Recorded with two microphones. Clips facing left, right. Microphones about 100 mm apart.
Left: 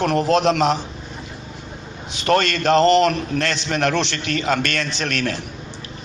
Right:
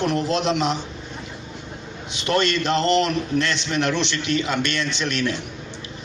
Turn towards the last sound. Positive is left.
turn(degrees=40)  # may be behind; listen again after turning